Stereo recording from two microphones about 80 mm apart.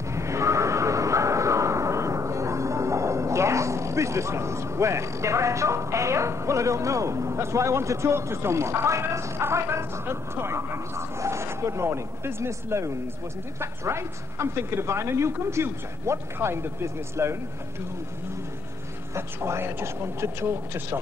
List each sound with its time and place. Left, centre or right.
0.1 s neigh: right
13.6 s a woman's voice: right
19.1 s a woman's voice: right